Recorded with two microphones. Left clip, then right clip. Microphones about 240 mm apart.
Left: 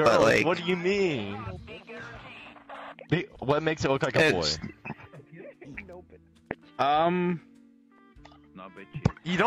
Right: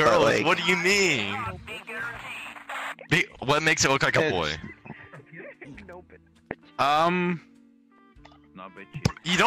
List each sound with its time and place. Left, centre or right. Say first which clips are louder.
0.0 s speech: right 1 dB; centre
0.5 s a sound: right 5 dB; right
3.1 s speech: right 4 dB; right
5.1 s music: right 3 dB; right
6.8 s speech: right 2 dB; right
8.5 s speech: right 3 dB; centre
9.0 s music: right 5 dB; right